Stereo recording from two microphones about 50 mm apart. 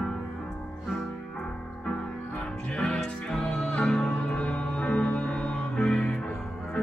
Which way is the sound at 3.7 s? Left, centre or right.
Left.